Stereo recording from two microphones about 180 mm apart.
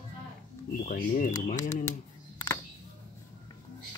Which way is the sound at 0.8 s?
50° left (ahead or behind).